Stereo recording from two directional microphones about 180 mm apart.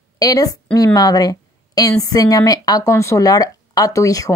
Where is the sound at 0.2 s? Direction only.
20° left (ahead or behind).